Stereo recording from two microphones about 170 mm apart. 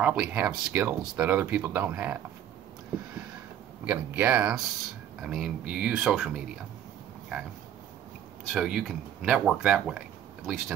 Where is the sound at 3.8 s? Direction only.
10° right (ahead or behind).